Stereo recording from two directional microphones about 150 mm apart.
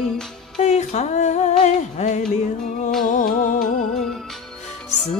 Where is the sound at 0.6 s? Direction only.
50° left (ahead or behind).